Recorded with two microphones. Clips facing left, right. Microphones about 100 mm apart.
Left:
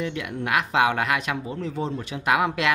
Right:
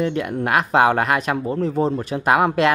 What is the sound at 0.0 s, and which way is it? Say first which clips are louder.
Speech: right 7 dB; 45° right (ahead or behind).